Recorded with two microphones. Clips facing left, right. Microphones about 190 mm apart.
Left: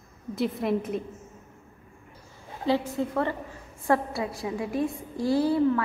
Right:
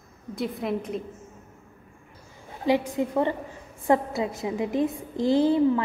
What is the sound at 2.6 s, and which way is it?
A woman's voice, 15° right (ahead or behind).